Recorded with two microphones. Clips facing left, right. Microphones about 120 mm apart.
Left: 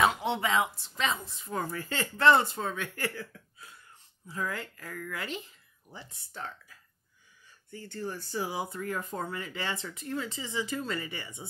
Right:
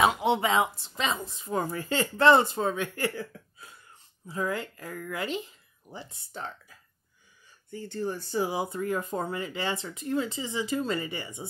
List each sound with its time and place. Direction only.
0.0 s speech: 15° right (ahead or behind)
7.7 s speech: 20° right (ahead or behind)